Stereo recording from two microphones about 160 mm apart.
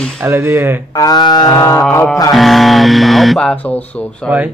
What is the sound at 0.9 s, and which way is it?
Speech, 25° left (ahead or behind).